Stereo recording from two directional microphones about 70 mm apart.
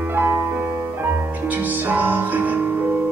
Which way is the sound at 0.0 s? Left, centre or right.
Right.